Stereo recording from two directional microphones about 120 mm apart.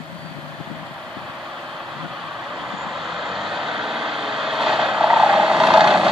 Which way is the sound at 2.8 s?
Centre (ahead or behind).